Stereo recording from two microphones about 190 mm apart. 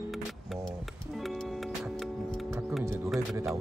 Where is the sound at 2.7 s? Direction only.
Centre (ahead or behind).